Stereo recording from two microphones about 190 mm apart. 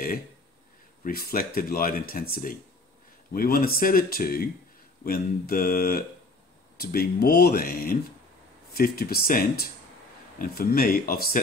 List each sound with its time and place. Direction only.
1.0 s speech: 50° left (ahead or behind)